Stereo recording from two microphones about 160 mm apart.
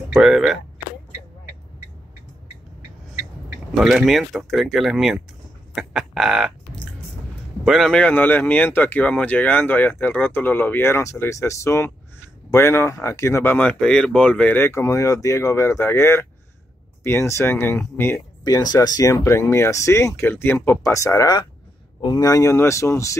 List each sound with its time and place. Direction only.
0.1 s speech: 5° right (ahead or behind)
3.7 s speech: centre (ahead or behind)
5.8 s frog: centre (ahead or behind)
7.6 s speech: centre (ahead or behind); by 23.1 s 20° left (ahead or behind)